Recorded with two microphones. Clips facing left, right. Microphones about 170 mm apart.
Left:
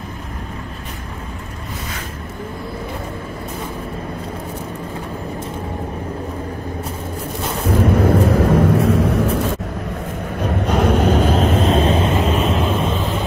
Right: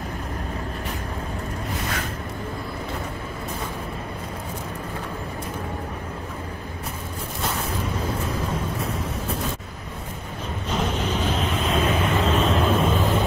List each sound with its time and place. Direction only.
7.8 s vehicle: 65° left (ahead or behind)
10.4 s vehicle: 65° left (ahead or behind); by 11.6 s 45° left (ahead or behind)
11.6 s vehicle: 25° left (ahead or behind)
12.4 s vehicle: centre (ahead or behind)